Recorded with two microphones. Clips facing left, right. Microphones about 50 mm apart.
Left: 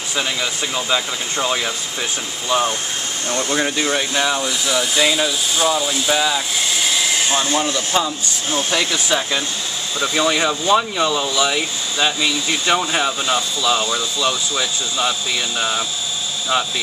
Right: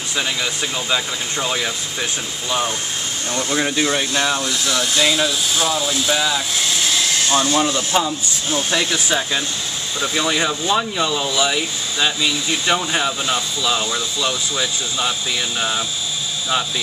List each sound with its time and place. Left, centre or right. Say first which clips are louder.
0.1 s speech: even; centre
3.4 s speech: right 1 dB; centre
7.9 s speech: even; centre